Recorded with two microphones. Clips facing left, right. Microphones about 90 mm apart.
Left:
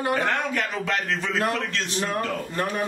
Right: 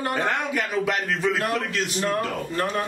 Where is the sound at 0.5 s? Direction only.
10° right (ahead or behind).